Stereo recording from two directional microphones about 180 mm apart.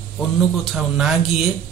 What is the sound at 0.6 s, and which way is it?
Speech, centre (ahead or behind).